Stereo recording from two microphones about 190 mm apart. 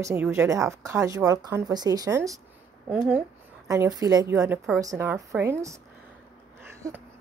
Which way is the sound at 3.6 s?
15° right (ahead or behind).